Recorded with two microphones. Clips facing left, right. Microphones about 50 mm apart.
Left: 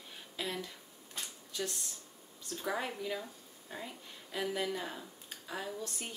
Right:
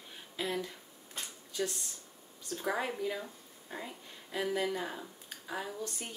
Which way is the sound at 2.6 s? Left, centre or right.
Centre.